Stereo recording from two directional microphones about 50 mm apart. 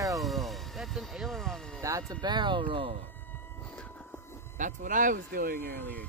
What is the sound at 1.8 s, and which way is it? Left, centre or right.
Speech, right.